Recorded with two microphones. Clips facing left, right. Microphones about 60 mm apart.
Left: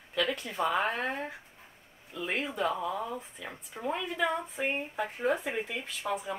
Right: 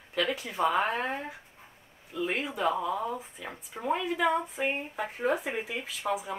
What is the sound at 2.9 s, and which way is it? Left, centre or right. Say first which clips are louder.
Speech: right 3 dB; centre.